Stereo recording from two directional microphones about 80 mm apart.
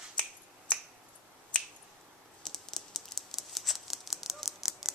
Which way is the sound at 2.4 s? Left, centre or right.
Centre.